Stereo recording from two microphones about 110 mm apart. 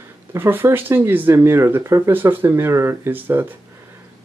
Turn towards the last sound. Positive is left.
turn(degrees=-20)  # may be behind; listen again after turning